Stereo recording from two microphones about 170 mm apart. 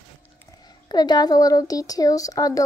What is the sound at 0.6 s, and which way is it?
A child's voice, 25° left (ahead or behind).